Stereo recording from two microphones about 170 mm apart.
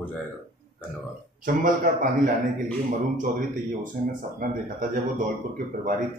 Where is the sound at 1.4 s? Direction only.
50° right (ahead or behind).